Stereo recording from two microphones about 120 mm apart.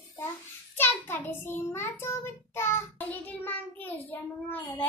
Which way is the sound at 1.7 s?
20° left (ahead or behind).